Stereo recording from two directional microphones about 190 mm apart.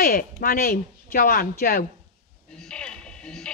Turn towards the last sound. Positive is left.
turn(degrees=5)  # may be behind; listen again after turning